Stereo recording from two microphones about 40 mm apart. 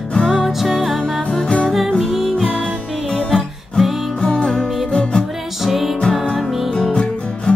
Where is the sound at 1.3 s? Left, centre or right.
Left.